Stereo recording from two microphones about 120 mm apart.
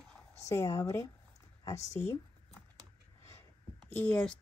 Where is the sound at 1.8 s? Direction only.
70° left (ahead or behind).